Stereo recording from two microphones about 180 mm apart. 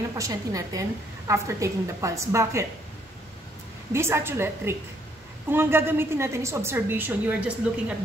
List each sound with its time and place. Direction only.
0.2 s a woman's voice: 20° right (ahead or behind)
3.9 s a woman's voice: 15° right (ahead or behind)